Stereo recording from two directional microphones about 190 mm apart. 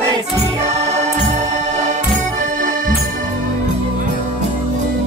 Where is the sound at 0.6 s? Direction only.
35° right (ahead or behind).